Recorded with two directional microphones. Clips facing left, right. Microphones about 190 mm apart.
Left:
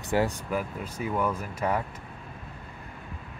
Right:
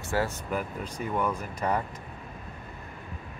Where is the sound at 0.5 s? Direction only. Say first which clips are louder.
Left 1 dB; 5° left (ahead or behind).